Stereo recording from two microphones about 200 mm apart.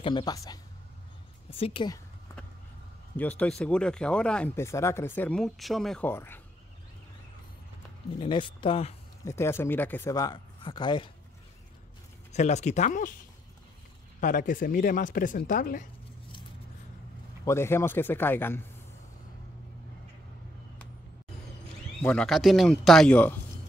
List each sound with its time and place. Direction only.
0.0 s speech: 20° left (ahead or behind)
3.2 s speech: 10° left (ahead or behind)
8.2 s speech: 25° left (ahead or behind)
9.2 s speech: 15° left (ahead or behind)
12.3 s speech: 35° left (ahead or behind)
14.2 s speech: 40° left (ahead or behind)
17.5 s speech: 10° left (ahead or behind)
22.0 s speech: 5° left (ahead or behind)